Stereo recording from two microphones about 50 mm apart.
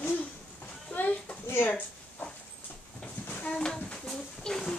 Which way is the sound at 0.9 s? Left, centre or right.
Left.